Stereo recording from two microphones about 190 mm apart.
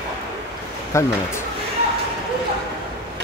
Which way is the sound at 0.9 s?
15° left (ahead or behind).